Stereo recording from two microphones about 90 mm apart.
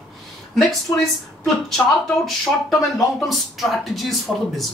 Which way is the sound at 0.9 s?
45° left (ahead or behind).